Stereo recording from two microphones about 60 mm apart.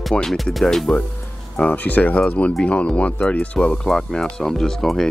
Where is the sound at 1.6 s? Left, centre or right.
Left.